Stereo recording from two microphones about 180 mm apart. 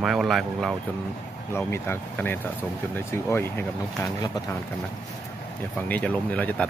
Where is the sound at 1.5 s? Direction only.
15° left (ahead or behind).